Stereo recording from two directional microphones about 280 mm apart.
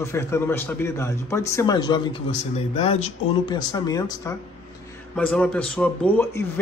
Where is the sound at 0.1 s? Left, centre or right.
Centre.